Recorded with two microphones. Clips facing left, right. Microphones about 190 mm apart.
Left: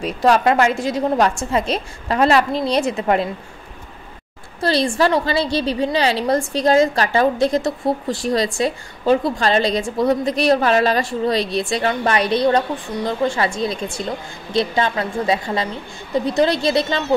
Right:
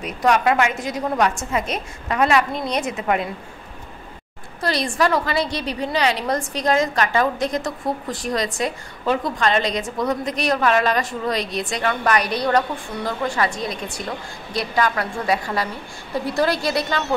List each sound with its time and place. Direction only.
0.0 s a woman's voice: 30° left (ahead or behind)
4.6 s a woman's voice: 30° left (ahead or behind)